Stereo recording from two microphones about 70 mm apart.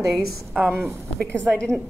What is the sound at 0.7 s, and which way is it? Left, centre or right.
Speech, right.